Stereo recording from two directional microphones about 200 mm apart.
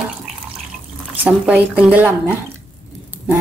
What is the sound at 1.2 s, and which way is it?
Speech, 5° right (ahead or behind).